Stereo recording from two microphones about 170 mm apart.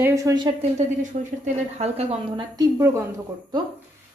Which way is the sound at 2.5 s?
20° right (ahead or behind).